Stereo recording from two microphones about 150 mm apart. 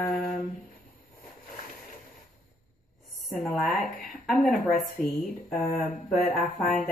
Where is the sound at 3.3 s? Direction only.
Centre (ahead or behind).